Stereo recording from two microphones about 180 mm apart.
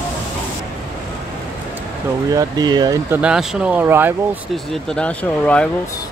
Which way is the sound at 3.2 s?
5° right (ahead or behind).